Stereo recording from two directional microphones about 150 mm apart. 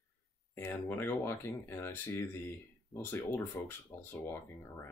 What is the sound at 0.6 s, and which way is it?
Speech, 15° left (ahead or behind).